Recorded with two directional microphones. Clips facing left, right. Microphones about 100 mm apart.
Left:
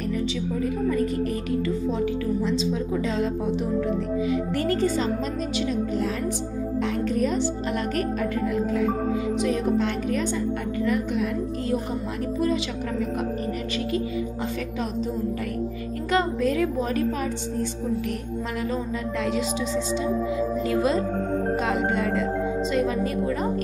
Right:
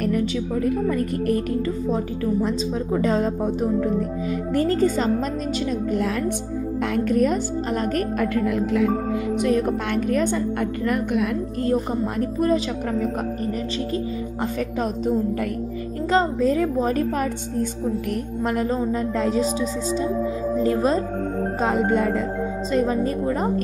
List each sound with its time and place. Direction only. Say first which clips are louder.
0.8 s speech: right 2 dB; 55° right (ahead or behind)
4.6 s a woman's voice: right 6 dB; 40° right (ahead or behind)
7.1 s speech: right 6 dB; 55° right (ahead or behind)
8.2 s speech: right 3 dB; 85° right
9.4 s speech: right 2 dB; 55° right (ahead or behind)
12.2 s speech: right 3 dB; 45° right (ahead or behind)
16.1 s a woman's voice: right 3 dB; 30° right (ahead or behind)
18.6 s a woman's voice: right 4 dB; 40° right (ahead or behind)
20.5 s a woman's voice: right 5 dB; 35° right (ahead or behind)